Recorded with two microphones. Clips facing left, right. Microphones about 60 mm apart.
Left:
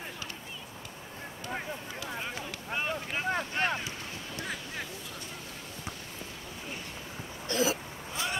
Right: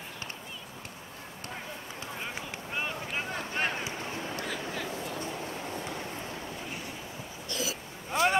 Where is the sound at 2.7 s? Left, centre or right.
Centre.